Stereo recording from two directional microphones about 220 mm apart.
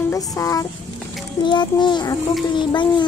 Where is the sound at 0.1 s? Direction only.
15° left (ahead or behind).